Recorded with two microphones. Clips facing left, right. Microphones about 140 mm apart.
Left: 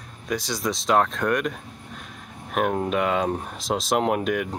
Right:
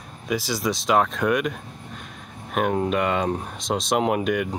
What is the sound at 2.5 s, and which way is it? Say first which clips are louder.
Speech: right 1 dB; centre (ahead or behind).